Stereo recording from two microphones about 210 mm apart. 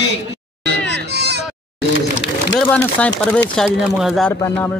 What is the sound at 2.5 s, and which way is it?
Speech, 5° left (ahead or behind).